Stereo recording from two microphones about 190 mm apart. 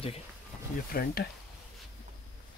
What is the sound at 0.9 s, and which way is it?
Speech, 50° left (ahead or behind).